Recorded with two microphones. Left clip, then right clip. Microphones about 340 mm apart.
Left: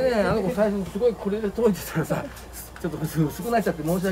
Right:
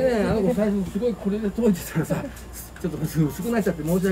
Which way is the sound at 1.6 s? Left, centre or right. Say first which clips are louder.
Left 1 dB; centre.